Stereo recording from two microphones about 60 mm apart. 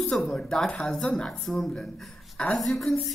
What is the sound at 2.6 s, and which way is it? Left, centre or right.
Speech, centre.